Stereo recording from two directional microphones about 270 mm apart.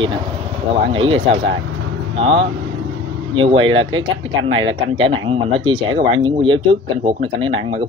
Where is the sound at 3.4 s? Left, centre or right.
Centre.